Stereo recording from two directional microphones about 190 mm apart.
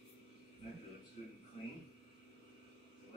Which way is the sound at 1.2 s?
35° left (ahead or behind).